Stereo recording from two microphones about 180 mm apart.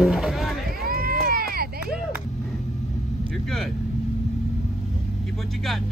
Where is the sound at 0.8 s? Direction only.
55° right (ahead or behind).